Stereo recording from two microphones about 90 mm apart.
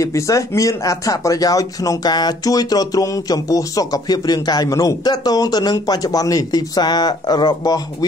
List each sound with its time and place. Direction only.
0.0 s speech: 35° left (ahead or behind)